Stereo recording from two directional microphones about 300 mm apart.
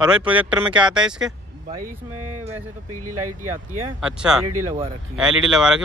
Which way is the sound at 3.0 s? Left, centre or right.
Right.